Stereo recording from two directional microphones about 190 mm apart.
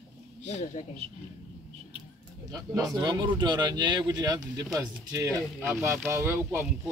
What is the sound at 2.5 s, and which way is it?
Speech, 20° right (ahead or behind).